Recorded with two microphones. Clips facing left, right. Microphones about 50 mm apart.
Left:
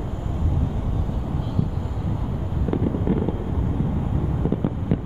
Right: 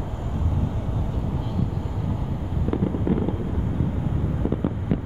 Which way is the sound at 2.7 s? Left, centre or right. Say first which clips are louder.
Left 1 dB; centre.